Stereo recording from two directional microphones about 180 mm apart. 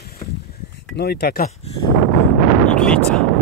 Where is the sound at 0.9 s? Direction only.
65° left (ahead or behind).